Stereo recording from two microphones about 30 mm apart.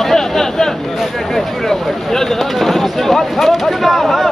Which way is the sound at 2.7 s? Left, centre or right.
Centre.